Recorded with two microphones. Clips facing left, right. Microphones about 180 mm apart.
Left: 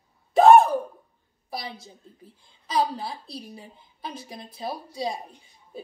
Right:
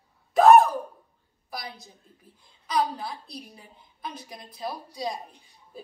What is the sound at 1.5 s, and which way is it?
A woman's voice, 25° left (ahead or behind).